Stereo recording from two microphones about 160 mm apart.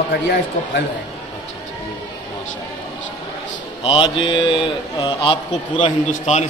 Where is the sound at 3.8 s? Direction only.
30° left (ahead or behind).